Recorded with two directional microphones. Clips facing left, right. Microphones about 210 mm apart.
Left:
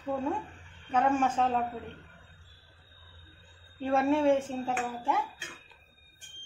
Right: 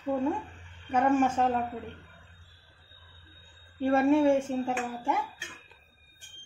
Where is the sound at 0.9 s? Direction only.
10° right (ahead or behind).